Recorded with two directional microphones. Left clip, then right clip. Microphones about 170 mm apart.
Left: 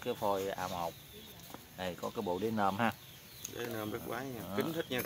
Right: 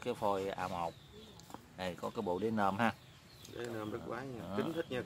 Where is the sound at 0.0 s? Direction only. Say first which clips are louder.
Left 1 dB; 5° right (ahead or behind).